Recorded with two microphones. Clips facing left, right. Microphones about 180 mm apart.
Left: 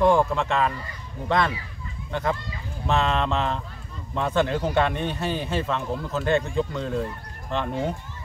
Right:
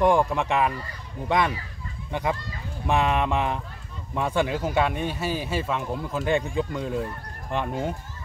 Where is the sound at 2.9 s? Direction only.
15° right (ahead or behind).